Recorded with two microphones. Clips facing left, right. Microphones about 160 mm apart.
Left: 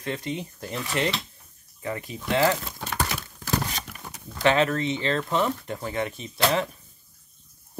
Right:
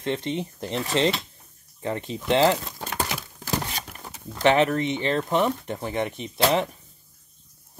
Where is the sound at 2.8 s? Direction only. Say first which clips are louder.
Even; 25° right (ahead or behind).